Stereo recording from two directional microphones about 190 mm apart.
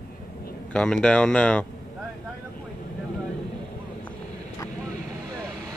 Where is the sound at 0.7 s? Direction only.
5° left (ahead or behind).